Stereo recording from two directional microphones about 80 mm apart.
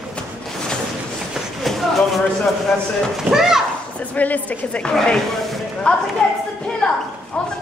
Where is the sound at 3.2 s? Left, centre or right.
Centre.